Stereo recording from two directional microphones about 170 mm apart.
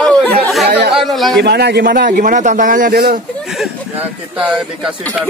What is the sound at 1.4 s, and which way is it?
A man's voice, 75° right (ahead or behind).